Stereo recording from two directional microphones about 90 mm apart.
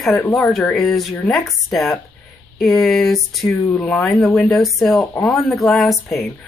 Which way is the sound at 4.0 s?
15° left (ahead or behind).